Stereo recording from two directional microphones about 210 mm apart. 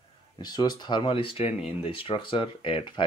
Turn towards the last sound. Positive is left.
turn(degrees=25)  # may be behind; listen again after turning